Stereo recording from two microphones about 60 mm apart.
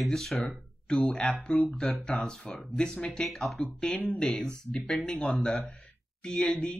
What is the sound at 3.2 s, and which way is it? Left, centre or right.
Speech, centre.